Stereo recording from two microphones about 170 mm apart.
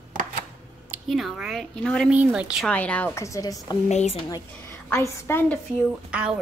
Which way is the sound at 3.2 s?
20° left (ahead or behind).